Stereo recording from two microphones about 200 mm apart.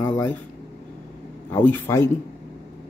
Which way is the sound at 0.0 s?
10° left (ahead or behind).